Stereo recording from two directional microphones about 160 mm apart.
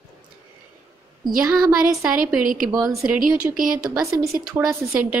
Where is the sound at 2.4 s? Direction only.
60° right (ahead or behind).